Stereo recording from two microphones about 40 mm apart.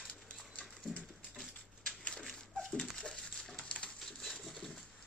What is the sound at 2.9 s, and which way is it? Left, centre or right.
Patter, centre.